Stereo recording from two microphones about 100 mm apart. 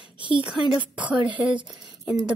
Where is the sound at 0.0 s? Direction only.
55° right (ahead or behind).